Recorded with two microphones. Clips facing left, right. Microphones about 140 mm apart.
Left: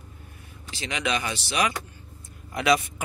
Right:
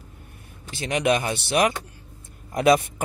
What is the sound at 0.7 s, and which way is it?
Speech, 50° right (ahead or behind).